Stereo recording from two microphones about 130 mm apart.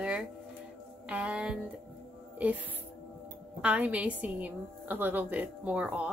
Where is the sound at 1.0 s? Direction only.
10° right (ahead or behind).